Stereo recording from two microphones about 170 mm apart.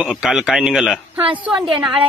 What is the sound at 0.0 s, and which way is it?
A man's voice, 5° right (ahead or behind).